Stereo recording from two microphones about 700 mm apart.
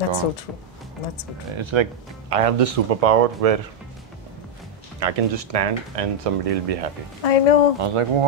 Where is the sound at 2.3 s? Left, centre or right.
Right.